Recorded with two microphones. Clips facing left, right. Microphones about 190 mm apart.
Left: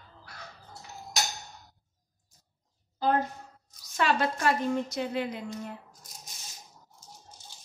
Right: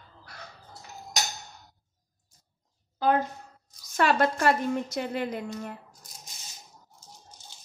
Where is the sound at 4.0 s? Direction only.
55° right (ahead or behind).